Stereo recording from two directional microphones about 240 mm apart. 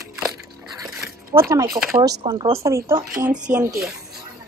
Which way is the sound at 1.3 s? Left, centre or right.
Centre.